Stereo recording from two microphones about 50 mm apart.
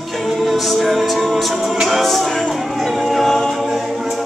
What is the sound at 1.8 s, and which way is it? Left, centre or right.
A capella, centre.